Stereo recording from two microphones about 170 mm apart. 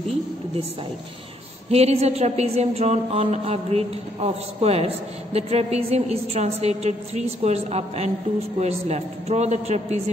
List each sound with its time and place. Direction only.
1.7 s a woman's voice: 40° right (ahead or behind)